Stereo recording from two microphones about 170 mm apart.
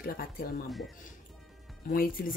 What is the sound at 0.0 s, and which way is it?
Speech, 60° left (ahead or behind).